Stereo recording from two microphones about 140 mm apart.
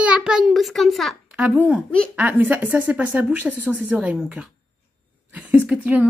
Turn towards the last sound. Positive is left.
turn(degrees=-10)  # may be behind; listen again after turning